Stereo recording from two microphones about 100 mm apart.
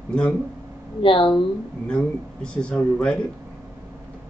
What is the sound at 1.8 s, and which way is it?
Speech, 10° left (ahead or behind).